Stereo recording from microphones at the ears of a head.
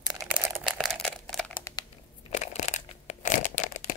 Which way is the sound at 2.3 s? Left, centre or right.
Left.